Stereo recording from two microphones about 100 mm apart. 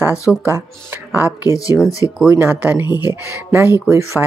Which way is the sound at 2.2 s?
25° right (ahead or behind).